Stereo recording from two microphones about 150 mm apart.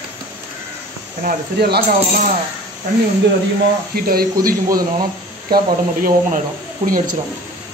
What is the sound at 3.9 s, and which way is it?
Speech, 85° right.